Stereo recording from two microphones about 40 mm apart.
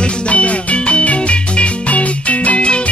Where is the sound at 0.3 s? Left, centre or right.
Left.